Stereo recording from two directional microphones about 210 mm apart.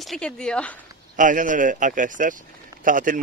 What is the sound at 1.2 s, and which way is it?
Speech, 40° right (ahead or behind).